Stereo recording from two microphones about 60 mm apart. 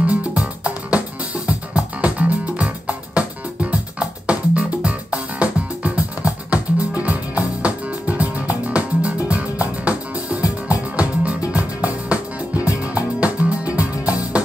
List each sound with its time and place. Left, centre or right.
0.0 s music: right